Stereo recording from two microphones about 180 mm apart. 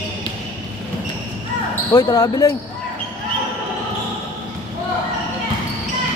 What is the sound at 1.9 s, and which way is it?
Speech, 20° left (ahead or behind).